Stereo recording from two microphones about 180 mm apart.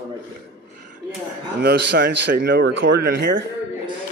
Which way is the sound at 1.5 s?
65° right (ahead or behind).